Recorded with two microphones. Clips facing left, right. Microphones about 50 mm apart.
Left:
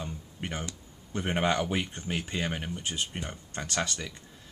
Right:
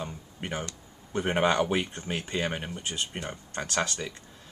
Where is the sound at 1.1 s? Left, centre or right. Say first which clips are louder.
Right 3 dB; centre.